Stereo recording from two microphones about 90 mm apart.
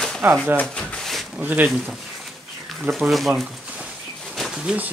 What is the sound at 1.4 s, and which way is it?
Speech, 20° right (ahead or behind).